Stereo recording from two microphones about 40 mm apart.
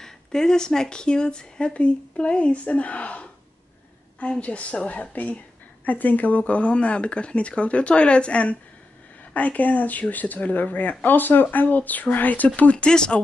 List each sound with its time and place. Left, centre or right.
0.0 s speech: centre
1.7 s speech: left
12.7 s speech: left